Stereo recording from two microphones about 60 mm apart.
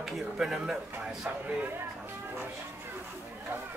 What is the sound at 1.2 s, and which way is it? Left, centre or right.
Speech, right.